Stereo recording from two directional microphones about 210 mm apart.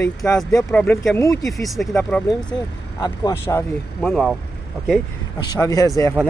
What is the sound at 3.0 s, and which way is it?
Speech, 15° left (ahead or behind).